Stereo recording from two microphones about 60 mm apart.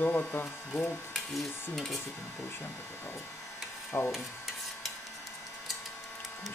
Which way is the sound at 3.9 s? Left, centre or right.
Left.